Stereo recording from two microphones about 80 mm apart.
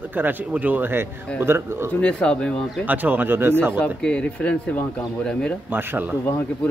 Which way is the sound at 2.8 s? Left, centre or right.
Right.